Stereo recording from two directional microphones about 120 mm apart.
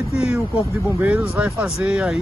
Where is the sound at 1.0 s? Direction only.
10° right (ahead or behind).